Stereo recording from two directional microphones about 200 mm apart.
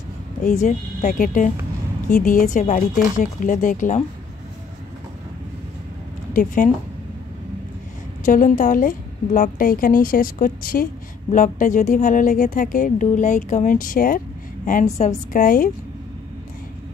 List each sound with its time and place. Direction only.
0.4 s a woman's voice: 40° left (ahead or behind)
6.3 s a woman's voice: 45° left (ahead or behind)
8.3 s a woman's voice: 40° left (ahead or behind)